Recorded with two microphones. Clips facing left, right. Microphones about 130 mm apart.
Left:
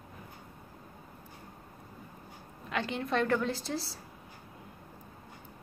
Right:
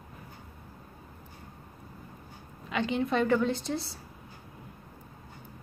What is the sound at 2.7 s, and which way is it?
A woman's voice, centre (ahead or behind).